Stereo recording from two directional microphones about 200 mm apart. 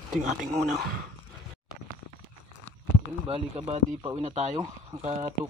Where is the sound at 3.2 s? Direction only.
30° right (ahead or behind).